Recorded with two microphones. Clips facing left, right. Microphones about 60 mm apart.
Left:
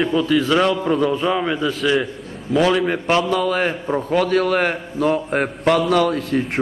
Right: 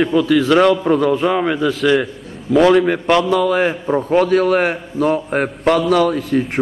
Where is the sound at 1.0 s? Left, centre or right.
Right.